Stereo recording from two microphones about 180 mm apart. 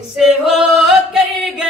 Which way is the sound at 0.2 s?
5° right (ahead or behind).